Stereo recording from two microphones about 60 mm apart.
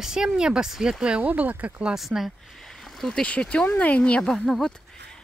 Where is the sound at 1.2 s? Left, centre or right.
Right.